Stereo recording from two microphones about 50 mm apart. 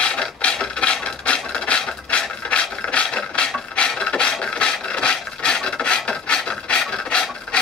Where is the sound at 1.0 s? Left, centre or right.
Centre.